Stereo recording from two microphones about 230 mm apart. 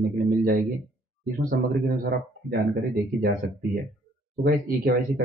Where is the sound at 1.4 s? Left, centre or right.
Right.